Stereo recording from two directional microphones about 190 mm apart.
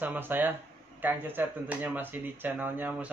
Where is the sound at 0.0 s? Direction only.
10° right (ahead or behind).